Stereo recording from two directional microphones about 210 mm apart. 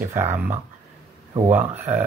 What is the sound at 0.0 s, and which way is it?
Speech, 10° right (ahead or behind).